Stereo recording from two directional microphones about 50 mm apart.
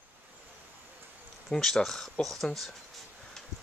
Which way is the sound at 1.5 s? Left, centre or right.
Centre.